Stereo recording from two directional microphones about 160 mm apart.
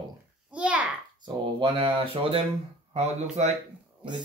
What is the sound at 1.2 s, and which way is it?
Speech, 30° right (ahead or behind).